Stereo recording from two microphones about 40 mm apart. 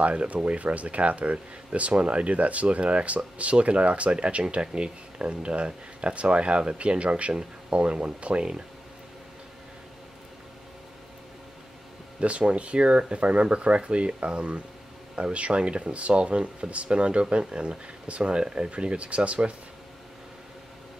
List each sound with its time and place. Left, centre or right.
0.0 s speech: right
12.2 s speech: right